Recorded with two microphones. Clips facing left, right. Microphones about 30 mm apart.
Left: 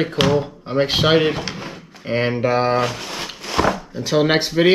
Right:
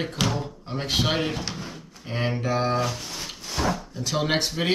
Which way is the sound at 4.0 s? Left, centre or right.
Left.